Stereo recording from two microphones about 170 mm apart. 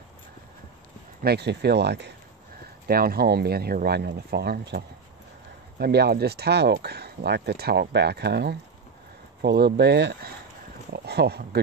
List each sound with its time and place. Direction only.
1.2 s speech: 80° right
2.9 s speech: 60° right (ahead or behind); by 10.3 s 85° right
10.9 s speech: 70° right (ahead or behind)